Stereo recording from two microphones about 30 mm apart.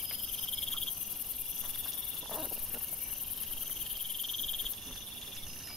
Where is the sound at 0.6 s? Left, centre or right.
Centre.